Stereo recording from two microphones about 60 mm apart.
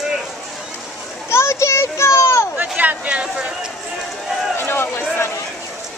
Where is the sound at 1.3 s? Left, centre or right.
Left.